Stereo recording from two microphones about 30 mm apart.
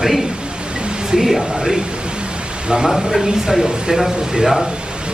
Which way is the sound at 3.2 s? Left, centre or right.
Centre.